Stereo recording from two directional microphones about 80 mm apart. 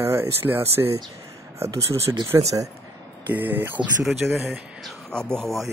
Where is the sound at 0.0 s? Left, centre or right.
Right.